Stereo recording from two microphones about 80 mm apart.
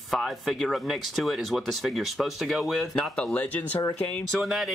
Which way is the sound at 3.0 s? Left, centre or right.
Centre.